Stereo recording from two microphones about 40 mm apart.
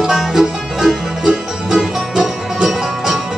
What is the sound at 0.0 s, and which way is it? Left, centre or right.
Music, centre.